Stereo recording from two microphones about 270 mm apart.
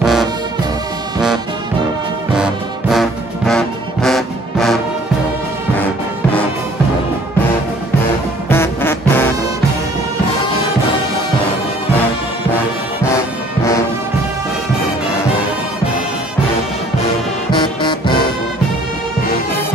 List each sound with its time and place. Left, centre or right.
0.0 s music: centre
2.3 s brass instrument: centre
8.5 s music: centre
17.5 s music: centre